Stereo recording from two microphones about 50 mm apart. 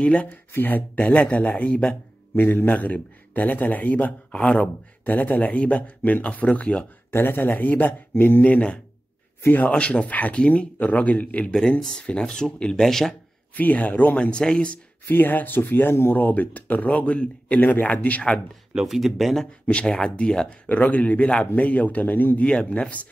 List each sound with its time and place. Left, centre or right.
0.0 s speech: left
0.6 s speech: left
2.3 s speech: left
4.3 s speech: left
7.1 s speech: left
11.8 s speech: centre
13.6 s speech: left
14.1 s speech: left
15.0 s speech: left
16.2 s speech: left
18.9 s speech: centre
19.6 s speech: left
22.7 s speech: left